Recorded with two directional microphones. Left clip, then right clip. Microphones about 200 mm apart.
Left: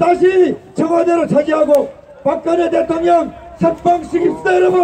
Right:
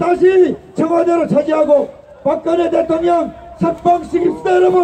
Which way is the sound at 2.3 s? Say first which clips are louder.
Even; 15° left (ahead or behind).